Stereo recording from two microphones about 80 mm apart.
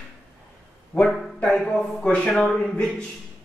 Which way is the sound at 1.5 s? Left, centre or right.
Centre.